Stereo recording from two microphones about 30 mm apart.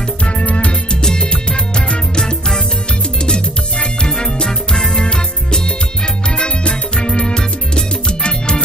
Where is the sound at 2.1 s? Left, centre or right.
Left.